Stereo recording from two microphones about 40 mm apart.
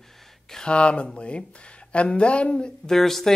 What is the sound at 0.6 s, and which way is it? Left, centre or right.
A man's voice, left.